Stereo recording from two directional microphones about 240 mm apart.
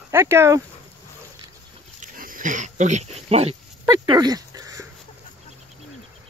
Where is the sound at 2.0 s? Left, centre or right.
Right; by 4.8 s centre.